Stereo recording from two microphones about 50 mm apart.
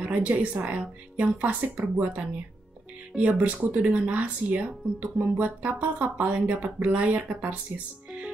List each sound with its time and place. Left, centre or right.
0.0 s speech: right